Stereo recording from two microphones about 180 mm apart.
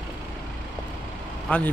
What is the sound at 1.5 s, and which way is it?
Speech, 5° left (ahead or behind).